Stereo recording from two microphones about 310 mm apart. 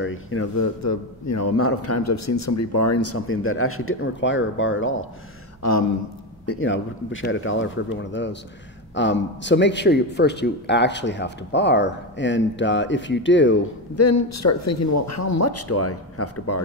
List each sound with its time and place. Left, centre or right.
0.0 s a man's voice: left
0.6 s a man's voice: left
5.6 s speech: left
6.4 s a man's voice: left
13.9 s speech: left